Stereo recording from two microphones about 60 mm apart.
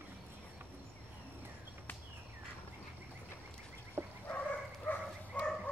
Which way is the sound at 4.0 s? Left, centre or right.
Right.